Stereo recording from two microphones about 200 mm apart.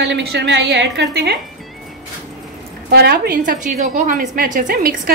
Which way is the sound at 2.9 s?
50° right (ahead or behind).